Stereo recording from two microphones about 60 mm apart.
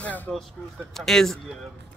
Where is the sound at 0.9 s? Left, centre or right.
Centre.